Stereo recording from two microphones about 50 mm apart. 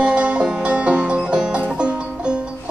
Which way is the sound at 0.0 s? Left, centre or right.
Centre.